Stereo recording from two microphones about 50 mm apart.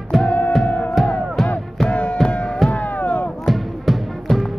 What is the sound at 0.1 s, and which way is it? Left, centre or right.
Music, centre.